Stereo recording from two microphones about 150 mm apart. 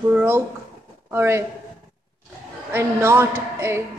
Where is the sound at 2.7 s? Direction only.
15° right (ahead or behind).